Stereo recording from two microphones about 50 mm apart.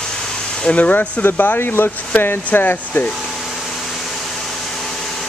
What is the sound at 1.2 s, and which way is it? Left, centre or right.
Speech, left.